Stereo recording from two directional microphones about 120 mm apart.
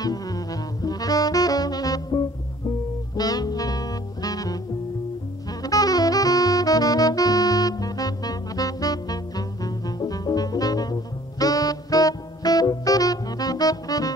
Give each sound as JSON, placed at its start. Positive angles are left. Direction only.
{"t": 0.0, "sound": "saxophone", "side_deg": 30}
{"t": 3.2, "sound": "music", "side_deg": 35}
{"t": 5.6, "sound": "saxophone", "side_deg": 30}